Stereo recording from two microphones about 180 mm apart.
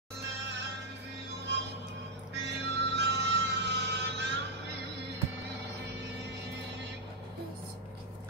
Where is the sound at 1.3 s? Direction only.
70° right (ahead or behind).